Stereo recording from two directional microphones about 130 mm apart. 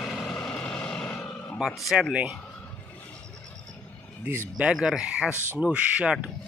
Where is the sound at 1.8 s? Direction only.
5° right (ahead or behind).